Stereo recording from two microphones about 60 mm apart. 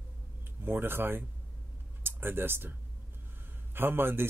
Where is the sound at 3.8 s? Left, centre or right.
Right.